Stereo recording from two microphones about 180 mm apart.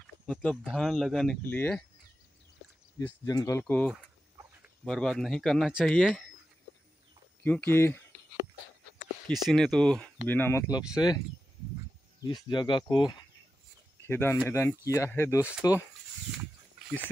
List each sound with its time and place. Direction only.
0.3 s speech: 5° left (ahead or behind)
3.3 s speech: 20° left (ahead or behind); by 6.2 s centre (ahead or behind)
7.4 s speech: 10° left (ahead or behind)
9.3 s speech: centre (ahead or behind); by 13.2 s 25° left (ahead or behind)
14.0 s speech: 10° left (ahead or behind)